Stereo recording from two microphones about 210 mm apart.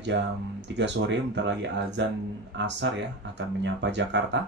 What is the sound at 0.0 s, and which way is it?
Speech, 55° right (ahead or behind).